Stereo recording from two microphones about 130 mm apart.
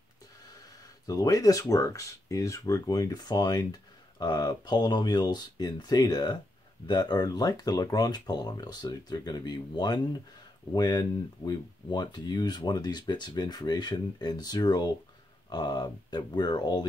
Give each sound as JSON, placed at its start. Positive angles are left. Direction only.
{"t": 1.0, "sound": "speech", "side_deg": 25}